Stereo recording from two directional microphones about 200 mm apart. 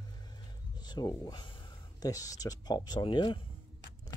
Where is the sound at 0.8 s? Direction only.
20° left (ahead or behind).